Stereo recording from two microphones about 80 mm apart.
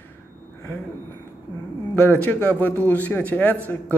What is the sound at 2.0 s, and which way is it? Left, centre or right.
Speech, left.